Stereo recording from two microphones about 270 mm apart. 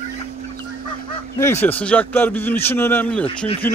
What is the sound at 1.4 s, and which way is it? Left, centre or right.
A man's voice, centre.